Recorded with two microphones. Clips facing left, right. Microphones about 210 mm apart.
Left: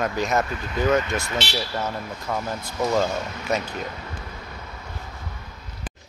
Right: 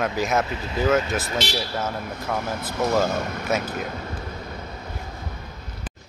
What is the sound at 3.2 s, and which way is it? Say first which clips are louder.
Speech: right 4 dB; 55° right (ahead or behind).